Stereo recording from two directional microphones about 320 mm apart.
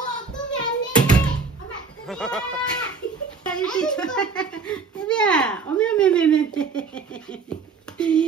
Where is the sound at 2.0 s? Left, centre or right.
Centre.